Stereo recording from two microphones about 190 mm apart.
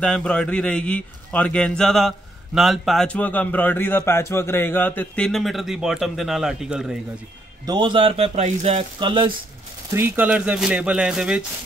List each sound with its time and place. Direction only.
0.0 s a man's voice: 5° left (ahead or behind)
7.6 s speech: 25° right (ahead or behind)
9.8 s a man's voice: 10° right (ahead or behind)